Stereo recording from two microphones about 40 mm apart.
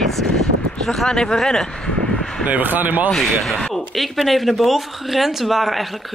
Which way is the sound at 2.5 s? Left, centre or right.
Right.